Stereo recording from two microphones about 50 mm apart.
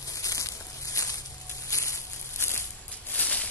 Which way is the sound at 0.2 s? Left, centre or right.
Left.